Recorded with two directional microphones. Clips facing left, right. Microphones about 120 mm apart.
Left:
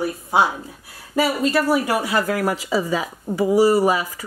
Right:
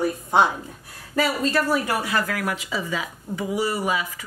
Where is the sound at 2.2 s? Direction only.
30° left (ahead or behind).